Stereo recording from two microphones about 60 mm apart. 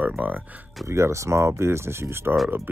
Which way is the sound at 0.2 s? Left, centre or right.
Right.